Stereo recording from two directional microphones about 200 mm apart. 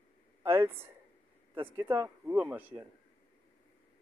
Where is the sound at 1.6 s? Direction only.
10° right (ahead or behind).